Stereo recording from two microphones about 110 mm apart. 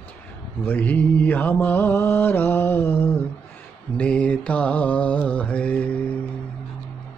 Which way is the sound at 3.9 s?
10° left (ahead or behind).